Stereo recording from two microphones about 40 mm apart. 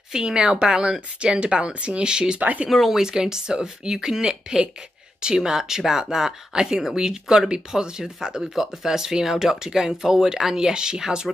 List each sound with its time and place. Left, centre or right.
0.1 s speech: centre